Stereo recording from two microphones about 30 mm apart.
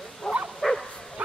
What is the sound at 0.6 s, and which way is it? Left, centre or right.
Bow-wow, centre.